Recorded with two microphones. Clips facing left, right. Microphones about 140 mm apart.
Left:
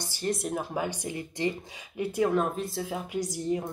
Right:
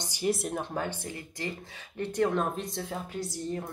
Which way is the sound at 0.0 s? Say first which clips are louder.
Right 2 dB; 15° right (ahead or behind).